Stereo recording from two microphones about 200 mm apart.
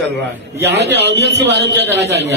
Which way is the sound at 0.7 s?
60° right (ahead or behind).